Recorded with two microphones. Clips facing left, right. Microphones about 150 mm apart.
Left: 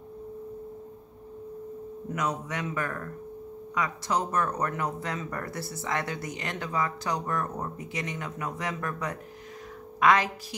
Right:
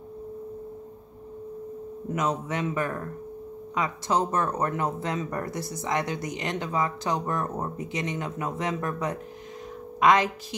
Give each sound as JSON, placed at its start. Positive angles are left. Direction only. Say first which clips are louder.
{"t": 2.1, "sound": "a woman's voice", "louder": "right 4 dB", "side_deg": -25}